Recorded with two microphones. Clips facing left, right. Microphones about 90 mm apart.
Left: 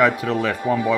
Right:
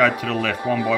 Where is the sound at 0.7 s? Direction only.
15° left (ahead or behind).